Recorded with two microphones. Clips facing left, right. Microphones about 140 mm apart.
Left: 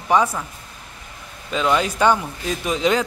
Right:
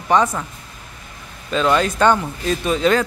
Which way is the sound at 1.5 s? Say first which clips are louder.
Right 2 dB; 10° left (ahead or behind).